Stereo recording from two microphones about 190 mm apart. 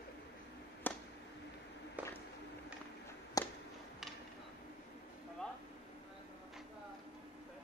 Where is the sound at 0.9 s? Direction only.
10° left (ahead or behind).